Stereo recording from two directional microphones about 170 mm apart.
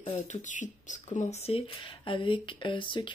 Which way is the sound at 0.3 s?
45° left (ahead or behind).